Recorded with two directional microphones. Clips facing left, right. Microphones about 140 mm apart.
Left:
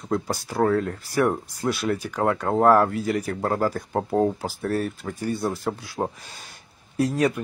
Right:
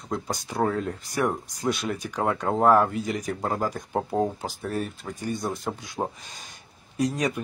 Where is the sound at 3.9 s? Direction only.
Centre (ahead or behind).